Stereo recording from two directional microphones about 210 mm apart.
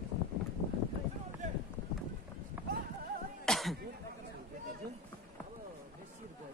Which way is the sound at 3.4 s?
Centre (ahead or behind).